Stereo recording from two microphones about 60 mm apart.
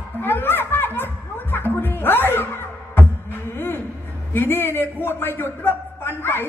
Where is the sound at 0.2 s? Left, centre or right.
Left.